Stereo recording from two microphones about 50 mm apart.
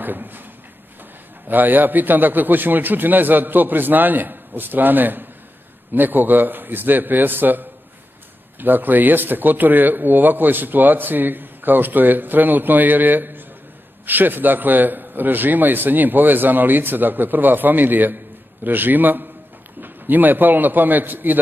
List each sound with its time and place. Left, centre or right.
0.0 s a man's voice: right
1.5 s a man's voice: right